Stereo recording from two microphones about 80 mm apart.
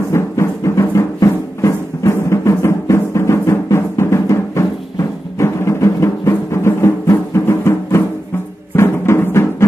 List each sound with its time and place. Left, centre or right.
0.1 s music: left